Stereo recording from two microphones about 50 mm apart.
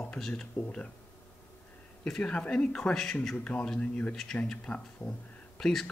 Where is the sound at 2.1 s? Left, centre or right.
Centre.